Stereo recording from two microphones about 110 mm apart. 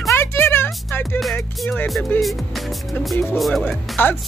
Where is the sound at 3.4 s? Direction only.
5° left (ahead or behind).